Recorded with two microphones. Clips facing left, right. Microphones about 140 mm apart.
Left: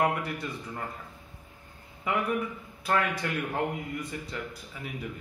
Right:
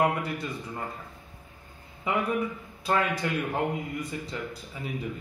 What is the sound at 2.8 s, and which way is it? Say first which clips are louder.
A man's voice: right 1 dB; 20° right (ahead or behind).